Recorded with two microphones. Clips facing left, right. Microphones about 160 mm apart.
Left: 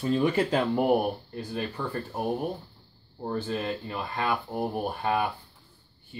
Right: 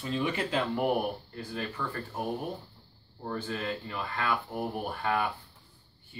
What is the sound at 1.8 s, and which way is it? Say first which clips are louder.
Speech: left 3 dB; 25° left (ahead or behind).